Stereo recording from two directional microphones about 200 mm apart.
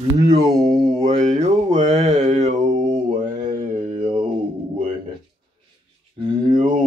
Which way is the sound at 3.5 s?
40° right (ahead or behind).